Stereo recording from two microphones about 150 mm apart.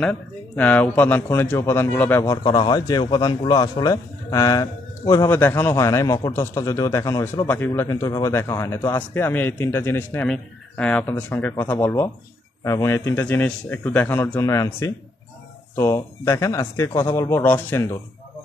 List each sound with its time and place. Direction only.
0.0 s speech: 10° left (ahead or behind); by 7.4 s 25° left (ahead or behind)
7.4 s a man's voice: 15° left (ahead or behind)